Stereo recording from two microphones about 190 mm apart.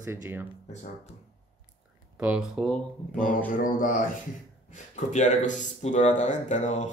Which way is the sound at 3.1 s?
45° left (ahead or behind).